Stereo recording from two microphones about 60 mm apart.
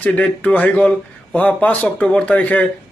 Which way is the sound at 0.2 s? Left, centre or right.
Left.